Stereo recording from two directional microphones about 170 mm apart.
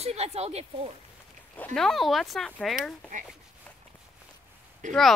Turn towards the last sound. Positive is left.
turn(degrees=-50)  # may be behind; listen again after turning